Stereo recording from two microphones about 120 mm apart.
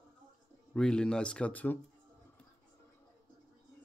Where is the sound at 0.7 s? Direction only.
5° left (ahead or behind).